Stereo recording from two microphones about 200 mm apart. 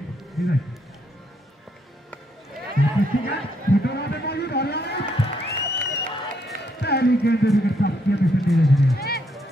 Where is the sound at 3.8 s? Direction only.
55° left (ahead or behind).